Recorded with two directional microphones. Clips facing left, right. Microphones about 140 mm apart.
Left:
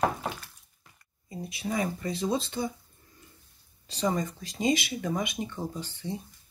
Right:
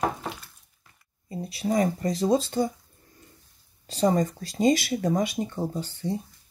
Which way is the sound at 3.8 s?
45° right (ahead or behind).